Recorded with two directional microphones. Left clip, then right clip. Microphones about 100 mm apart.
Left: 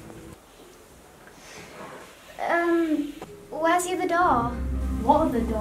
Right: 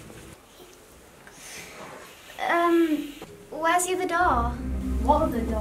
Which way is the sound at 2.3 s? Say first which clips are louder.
Right 1 dB; 40° right (ahead or behind).